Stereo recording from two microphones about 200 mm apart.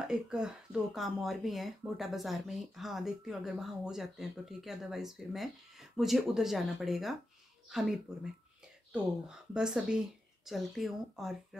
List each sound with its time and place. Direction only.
0.1 s speech: centre (ahead or behind)